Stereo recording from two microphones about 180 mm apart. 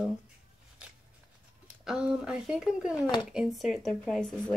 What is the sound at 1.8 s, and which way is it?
Speech, 5° right (ahead or behind).